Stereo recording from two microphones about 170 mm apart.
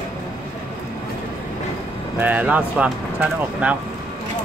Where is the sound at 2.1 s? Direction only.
10° right (ahead or behind).